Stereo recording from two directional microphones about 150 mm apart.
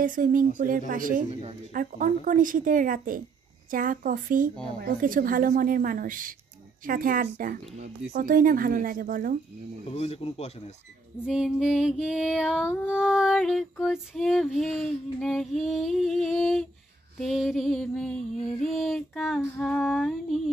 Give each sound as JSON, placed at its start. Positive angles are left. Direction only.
{"t": 0.0, "sound": "a woman's voice", "side_deg": -65}
{"t": 1.3, "sound": "a woman's voice", "side_deg": -40}
{"t": 1.7, "sound": "a woman's voice", "side_deg": -65}
{"t": 9.8, "sound": "speech", "side_deg": 40}
{"t": 11.2, "sound": "female singing", "side_deg": -5}